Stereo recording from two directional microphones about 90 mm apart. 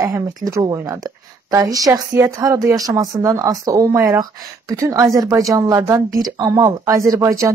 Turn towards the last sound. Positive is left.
turn(degrees=-35)  # may be behind; listen again after turning